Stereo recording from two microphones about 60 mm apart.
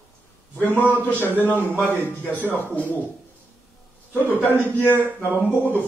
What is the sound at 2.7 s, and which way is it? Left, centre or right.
Speech, left.